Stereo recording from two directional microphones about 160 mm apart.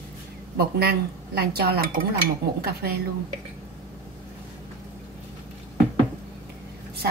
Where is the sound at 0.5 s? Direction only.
75° right (ahead or behind).